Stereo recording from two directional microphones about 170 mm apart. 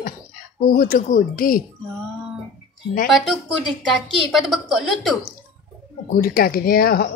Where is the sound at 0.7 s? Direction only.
55° left (ahead or behind).